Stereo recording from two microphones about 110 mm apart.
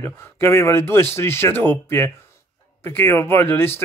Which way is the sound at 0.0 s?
25° left (ahead or behind).